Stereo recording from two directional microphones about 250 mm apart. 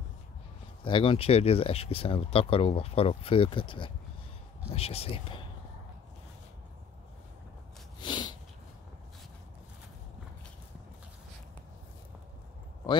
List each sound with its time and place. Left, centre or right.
0.8 s speech: left
8.0 s sniff: centre